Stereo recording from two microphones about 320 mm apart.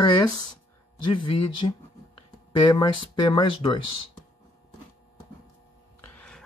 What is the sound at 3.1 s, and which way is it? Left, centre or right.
Speech, centre.